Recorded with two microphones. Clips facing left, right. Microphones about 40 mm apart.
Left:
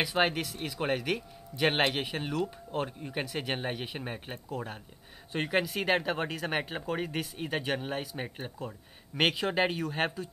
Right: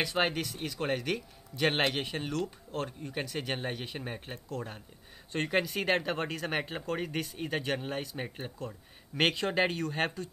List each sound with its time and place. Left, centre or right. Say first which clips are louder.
0.0 s speech: left 2 dB; centre